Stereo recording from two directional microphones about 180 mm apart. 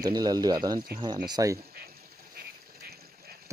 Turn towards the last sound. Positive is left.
turn(degrees=-60)  # may be behind; listen again after turning